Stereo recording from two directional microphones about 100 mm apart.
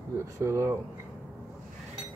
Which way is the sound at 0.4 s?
30° right (ahead or behind).